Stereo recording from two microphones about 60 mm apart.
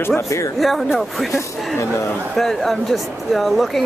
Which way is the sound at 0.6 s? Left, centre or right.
Centre.